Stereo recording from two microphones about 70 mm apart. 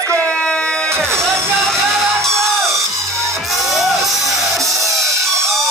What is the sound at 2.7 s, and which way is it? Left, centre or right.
Music, right.